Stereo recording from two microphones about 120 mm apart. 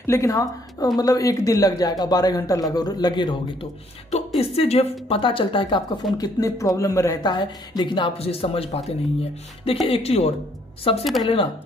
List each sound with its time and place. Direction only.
0.0 s speech: 25° left (ahead or behind)
4.4 s a woman's voice: 55° left (ahead or behind)
6.1 s a woman's voice: 30° left (ahead or behind); by 11.1 s 50° left (ahead or behind)